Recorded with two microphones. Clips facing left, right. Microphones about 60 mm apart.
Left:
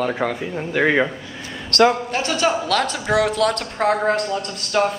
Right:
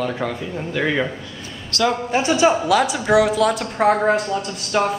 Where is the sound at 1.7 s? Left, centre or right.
Left.